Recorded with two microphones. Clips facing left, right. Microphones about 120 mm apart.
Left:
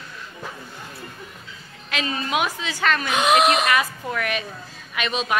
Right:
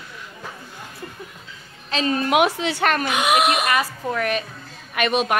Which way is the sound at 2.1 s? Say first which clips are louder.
Right 7 dB; 60° right (ahead or behind).